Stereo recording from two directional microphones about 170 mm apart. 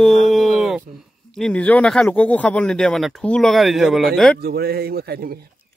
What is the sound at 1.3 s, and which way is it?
Speech, 5° left (ahead or behind).